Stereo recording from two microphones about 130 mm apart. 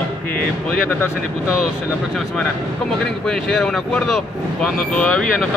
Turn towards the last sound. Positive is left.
turn(degrees=10)  # may be behind; listen again after turning